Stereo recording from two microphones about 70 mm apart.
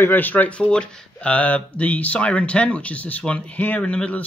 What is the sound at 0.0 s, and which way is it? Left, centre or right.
Speech, left.